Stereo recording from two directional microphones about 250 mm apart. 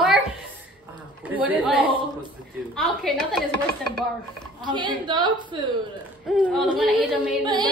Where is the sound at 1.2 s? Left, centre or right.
Centre.